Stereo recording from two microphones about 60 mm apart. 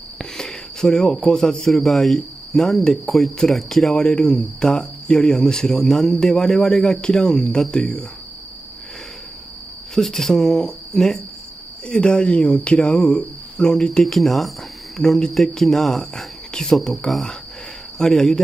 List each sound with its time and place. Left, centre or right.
0.2 s a sound: centre
1.9 s cricket: centre
3.1 s speech: centre
9.9 s speech: centre